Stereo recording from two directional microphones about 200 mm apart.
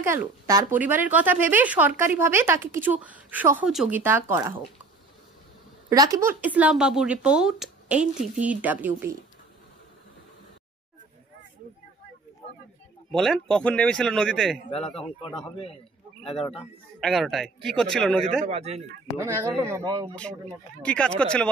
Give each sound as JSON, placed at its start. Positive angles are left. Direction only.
{"t": 0.0, "sound": "speech", "side_deg": -15}
{"t": 5.9, "sound": "speech", "side_deg": -15}
{"t": 13.1, "sound": "a man's voice", "side_deg": 0}
{"t": 16.3, "sound": "speech", "side_deg": 25}
{"t": 16.5, "sound": "a man's voice", "side_deg": 0}
{"t": 18.4, "sound": "speech", "side_deg": -30}
{"t": 19.1, "sound": "speech", "side_deg": -20}
{"t": 20.8, "sound": "a man's voice", "side_deg": 5}